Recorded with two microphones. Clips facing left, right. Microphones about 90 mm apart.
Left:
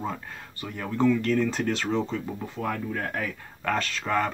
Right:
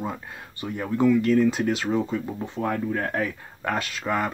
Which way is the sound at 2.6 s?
35° right (ahead or behind).